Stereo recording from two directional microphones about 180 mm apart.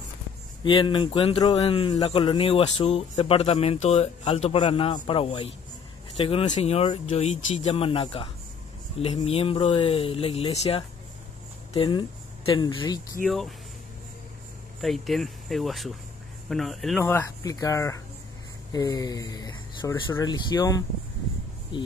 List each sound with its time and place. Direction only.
0.7 s speech: 25° left (ahead or behind)
13.2 s speech: centre (ahead or behind)
14.8 s speech: centre (ahead or behind)
17.0 s speech: 15° left (ahead or behind)